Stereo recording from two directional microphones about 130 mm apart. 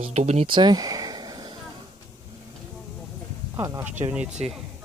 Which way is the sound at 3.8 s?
15° right (ahead or behind).